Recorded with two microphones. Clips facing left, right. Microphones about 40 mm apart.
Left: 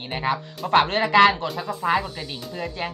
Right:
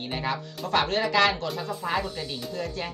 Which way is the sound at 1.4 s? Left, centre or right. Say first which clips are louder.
Left 3 dB; centre.